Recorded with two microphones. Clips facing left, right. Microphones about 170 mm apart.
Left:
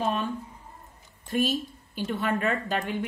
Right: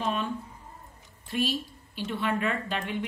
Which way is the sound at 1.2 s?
45° left (ahead or behind).